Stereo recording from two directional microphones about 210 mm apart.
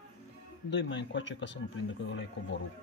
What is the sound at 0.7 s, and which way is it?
Speech, 60° left (ahead or behind).